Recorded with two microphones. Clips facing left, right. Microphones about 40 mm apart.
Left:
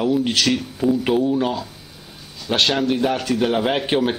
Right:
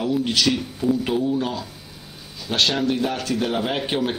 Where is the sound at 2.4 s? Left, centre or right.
Centre.